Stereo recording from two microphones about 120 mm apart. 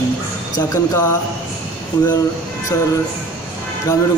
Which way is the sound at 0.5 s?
25° left (ahead or behind).